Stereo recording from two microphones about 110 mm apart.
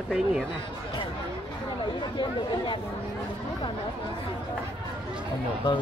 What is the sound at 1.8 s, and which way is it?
Speech, 45° left (ahead or behind).